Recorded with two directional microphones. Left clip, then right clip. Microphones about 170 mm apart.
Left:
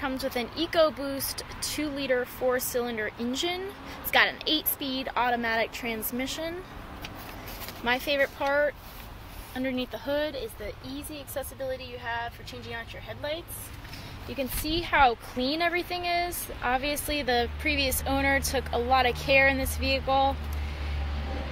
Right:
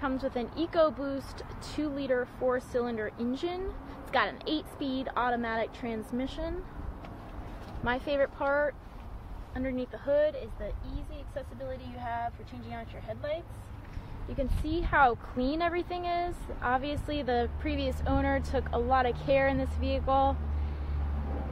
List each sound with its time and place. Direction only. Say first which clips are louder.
0.0 s speech: left 2 dB; 10° left (ahead or behind)
2.1 s speech: left 3 dB; 20° left (ahead or behind)
7.8 s speech: left 3 dB; 15° left (ahead or behind)
9.6 s speech: left 3 dB; 30° left (ahead or behind)
14.7 s speech: left 3 dB; 15° left (ahead or behind); by 20.3 s centre (ahead or behind)